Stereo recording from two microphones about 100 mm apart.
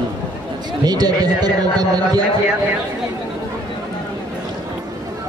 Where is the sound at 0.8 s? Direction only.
40° right (ahead or behind).